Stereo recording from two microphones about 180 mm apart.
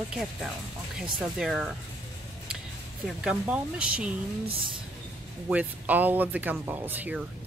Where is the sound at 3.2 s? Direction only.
5° right (ahead or behind).